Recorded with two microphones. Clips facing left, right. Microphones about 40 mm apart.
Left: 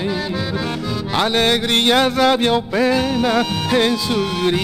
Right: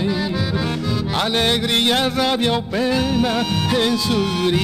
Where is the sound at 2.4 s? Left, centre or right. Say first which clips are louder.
Left 3 dB; centre.